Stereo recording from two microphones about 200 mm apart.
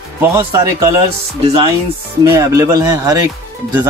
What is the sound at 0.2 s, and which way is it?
Speech, 10° right (ahead or behind).